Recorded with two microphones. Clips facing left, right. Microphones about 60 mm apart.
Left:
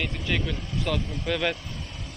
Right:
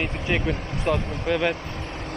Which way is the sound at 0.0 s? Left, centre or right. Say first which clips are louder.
Right 4 dB; right.